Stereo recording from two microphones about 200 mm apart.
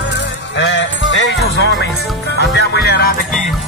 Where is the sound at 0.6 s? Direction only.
65° left (ahead or behind).